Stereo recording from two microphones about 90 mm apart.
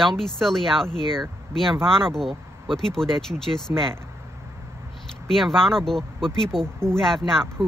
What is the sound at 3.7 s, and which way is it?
Speech, 30° right (ahead or behind).